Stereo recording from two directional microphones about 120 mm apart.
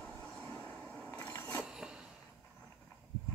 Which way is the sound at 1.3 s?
25° left (ahead or behind).